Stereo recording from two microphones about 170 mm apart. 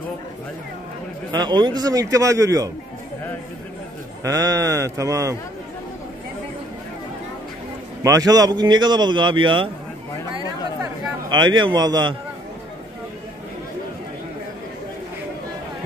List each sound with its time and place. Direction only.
1.3 s a man's voice: 25° right (ahead or behind)
4.2 s a man's voice: 20° right (ahead or behind)
8.0 s a man's voice: 20° right (ahead or behind)
10.3 s a sound: 25° right (ahead or behind)